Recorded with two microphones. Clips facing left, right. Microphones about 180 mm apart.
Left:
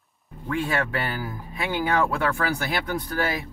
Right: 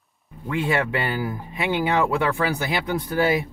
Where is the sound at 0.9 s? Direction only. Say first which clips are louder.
Right 4 dB; 20° right (ahead or behind).